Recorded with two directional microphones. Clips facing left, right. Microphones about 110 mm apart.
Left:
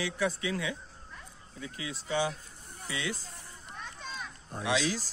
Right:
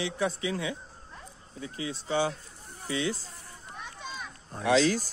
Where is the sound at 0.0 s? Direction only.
25° right (ahead or behind).